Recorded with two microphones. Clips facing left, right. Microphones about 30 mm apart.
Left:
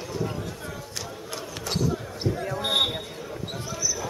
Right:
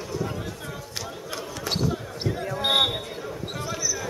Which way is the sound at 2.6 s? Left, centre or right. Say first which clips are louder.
Right 3 dB; right.